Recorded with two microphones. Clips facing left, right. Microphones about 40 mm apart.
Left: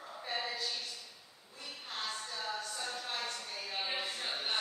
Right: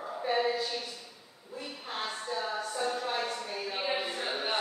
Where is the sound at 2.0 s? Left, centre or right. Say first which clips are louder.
Right 6 dB; right.